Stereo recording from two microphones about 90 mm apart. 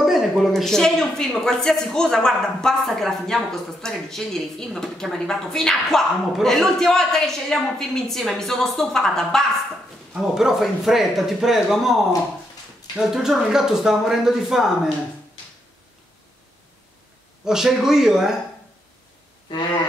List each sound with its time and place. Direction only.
0.0 s a woman's voice: centre (ahead or behind)
13.0 s a woman's voice: 5° right (ahead or behind)
17.5 s a woman's voice: 5° right (ahead or behind)